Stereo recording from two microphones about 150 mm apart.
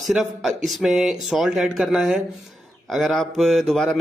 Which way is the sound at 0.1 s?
Centre (ahead or behind).